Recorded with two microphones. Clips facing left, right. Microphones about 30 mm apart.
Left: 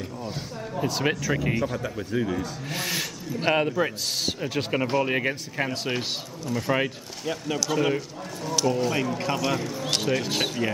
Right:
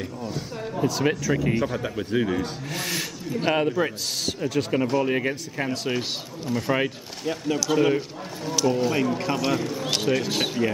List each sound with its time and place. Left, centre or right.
0.2 s speech: centre
1.8 s speech: right
2.7 s speech: centre
4.3 s speech: centre
6.5 s speech: centre